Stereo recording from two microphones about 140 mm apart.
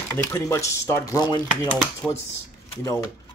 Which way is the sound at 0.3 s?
20° left (ahead or behind).